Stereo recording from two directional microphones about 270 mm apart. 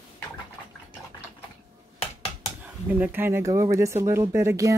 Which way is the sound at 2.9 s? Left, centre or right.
Centre.